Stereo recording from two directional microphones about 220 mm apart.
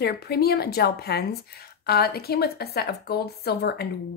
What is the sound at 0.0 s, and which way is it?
A woman's voice, 45° left (ahead or behind).